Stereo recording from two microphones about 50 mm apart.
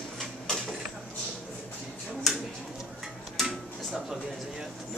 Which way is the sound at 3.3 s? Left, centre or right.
Centre.